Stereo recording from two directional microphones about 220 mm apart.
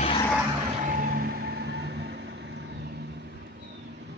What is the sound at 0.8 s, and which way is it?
Music, 35° right (ahead or behind).